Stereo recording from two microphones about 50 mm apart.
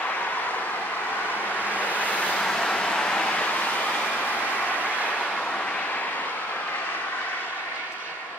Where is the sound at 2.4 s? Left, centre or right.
Centre; by 8.1 s left.